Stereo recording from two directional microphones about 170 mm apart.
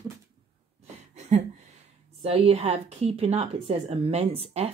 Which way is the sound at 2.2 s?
35° right (ahead or behind).